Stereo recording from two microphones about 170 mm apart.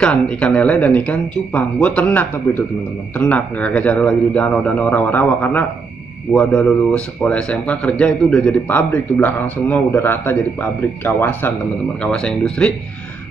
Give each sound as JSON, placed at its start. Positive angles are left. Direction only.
{"t": 0.0, "sound": "speech", "side_deg": 5}